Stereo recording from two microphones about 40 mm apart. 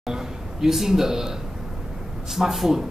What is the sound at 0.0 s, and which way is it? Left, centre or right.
A man's voice, centre.